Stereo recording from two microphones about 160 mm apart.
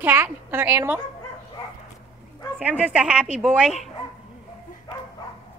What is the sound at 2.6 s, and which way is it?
A woman's voice, 10° right (ahead or behind).